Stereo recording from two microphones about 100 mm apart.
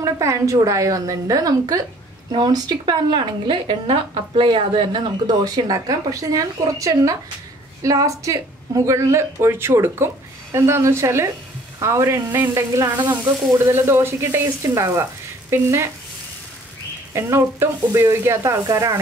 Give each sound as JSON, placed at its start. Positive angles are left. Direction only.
{"t": 0.0, "sound": "a woman's voice", "side_deg": -30}
{"t": 3.8, "sound": "a woman's voice", "side_deg": -70}
{"t": 17.1, "sound": "a woman's voice", "side_deg": -25}